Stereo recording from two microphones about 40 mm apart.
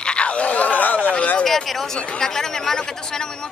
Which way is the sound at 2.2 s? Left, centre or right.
Centre.